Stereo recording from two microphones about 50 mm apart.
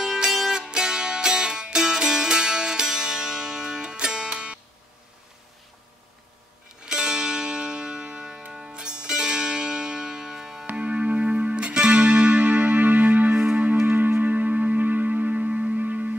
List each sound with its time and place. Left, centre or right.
0.0 s music: centre
6.8 s music: centre
8.5 s zither: centre
10.8 s music: right
13.8 s music: right